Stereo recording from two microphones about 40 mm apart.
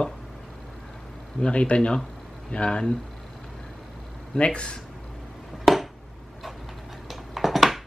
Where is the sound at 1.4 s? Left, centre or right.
Left.